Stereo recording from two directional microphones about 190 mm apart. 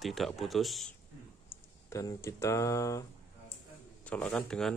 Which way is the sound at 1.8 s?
15° left (ahead or behind).